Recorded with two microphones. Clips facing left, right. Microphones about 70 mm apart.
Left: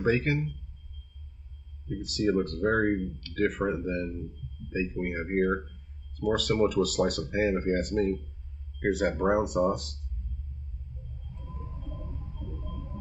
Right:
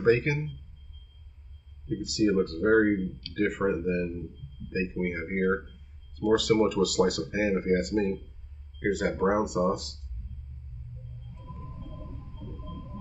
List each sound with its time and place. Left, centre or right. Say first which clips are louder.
0.0 s speech: right 3 dB; centre
2.0 s speech: right 2 dB; centre